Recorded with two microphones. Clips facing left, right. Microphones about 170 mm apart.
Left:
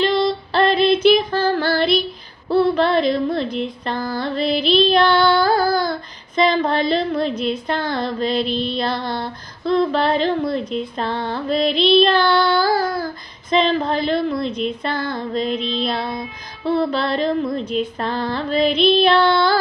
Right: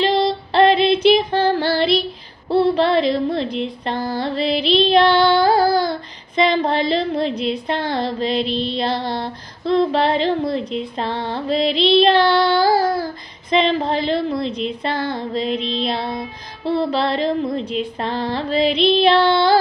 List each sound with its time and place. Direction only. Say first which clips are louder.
0.0 s female singing: even; 30° right (ahead or behind)
2.5 s a sound: even; 30° right (ahead or behind)
7.6 s child singing: right 1 dB; 25° right (ahead or behind)